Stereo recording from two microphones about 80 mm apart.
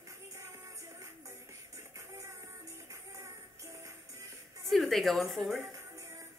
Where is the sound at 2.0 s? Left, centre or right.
Right.